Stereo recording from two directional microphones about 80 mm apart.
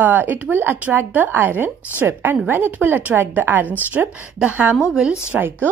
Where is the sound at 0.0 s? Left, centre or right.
Right.